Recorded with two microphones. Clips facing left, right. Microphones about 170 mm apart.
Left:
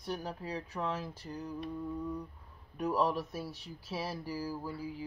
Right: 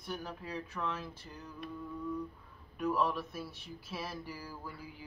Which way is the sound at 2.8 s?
35° left (ahead or behind).